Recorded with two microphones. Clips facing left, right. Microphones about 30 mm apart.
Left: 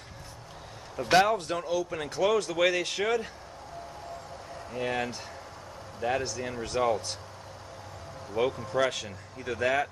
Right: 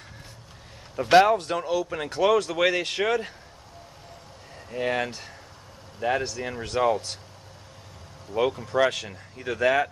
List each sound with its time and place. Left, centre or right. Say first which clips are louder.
0.9 s speech: right 5 dB; centre
4.6 s speech: right 4 dB; centre
8.4 s speech: right 4 dB; centre